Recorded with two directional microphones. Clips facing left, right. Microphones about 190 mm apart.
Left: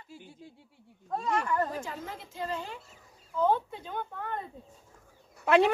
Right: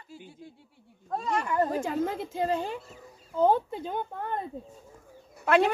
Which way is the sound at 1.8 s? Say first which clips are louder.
Right 11 dB; 50° right (ahead or behind).